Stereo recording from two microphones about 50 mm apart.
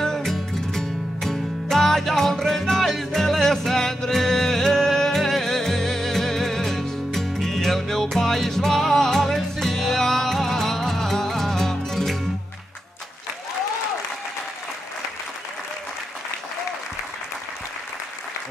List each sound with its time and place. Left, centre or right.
0.0 s music: centre